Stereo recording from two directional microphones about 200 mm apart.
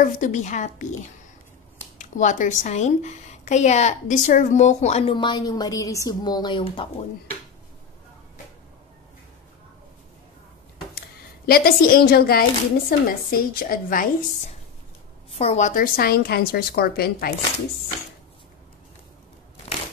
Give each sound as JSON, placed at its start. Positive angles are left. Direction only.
{"t": 0.0, "sound": "a woman's voice", "side_deg": 40}
{"t": 2.0, "sound": "a woman's voice", "side_deg": 40}
{"t": 11.0, "sound": "a woman's voice", "side_deg": 50}
{"t": 15.3, "sound": "a woman's voice", "side_deg": 35}